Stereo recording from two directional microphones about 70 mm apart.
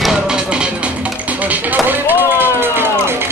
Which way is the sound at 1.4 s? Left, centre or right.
Right.